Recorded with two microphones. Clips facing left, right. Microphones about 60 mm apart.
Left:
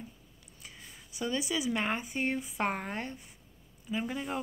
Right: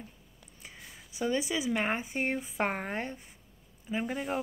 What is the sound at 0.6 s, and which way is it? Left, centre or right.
Speech, right.